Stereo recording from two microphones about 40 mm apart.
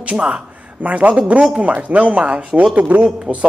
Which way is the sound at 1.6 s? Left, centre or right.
Right.